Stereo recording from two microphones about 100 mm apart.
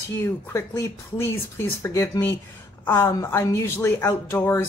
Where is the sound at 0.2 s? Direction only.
25° left (ahead or behind).